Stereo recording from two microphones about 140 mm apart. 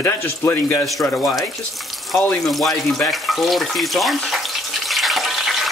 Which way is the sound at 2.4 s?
Centre (ahead or behind).